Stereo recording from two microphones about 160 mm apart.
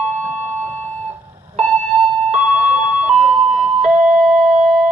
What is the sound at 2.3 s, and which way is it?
Music, 45° right (ahead or behind).